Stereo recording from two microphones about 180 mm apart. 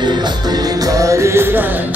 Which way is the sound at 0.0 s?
25° right (ahead or behind).